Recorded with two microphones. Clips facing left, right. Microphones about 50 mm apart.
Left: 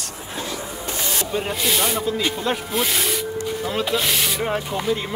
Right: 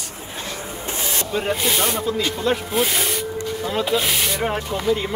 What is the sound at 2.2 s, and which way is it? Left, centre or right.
Speech, centre.